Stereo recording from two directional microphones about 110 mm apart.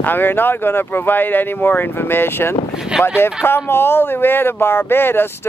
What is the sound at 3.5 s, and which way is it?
Speech, 20° left (ahead or behind).